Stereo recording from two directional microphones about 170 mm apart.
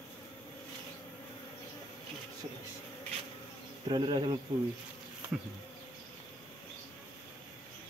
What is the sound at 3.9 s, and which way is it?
Speech, 30° right (ahead or behind).